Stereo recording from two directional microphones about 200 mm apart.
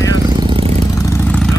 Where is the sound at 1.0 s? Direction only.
15° left (ahead or behind).